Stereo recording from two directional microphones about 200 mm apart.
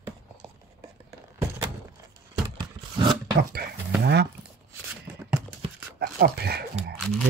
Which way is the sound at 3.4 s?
55° right (ahead or behind).